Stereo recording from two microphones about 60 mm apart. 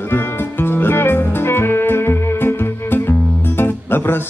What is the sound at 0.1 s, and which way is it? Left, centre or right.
Music, left.